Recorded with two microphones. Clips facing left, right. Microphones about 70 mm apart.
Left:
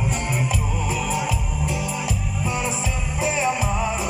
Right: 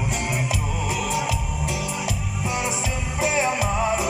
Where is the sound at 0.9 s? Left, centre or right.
Right.